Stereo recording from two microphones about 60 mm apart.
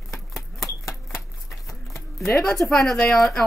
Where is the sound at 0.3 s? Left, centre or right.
Centre.